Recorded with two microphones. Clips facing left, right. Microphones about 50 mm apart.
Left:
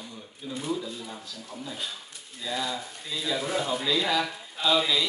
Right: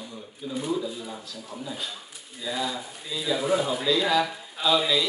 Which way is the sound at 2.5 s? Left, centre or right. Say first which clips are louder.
Right 1 dB; centre.